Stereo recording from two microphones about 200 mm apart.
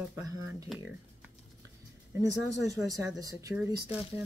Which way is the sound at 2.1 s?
15° right (ahead or behind).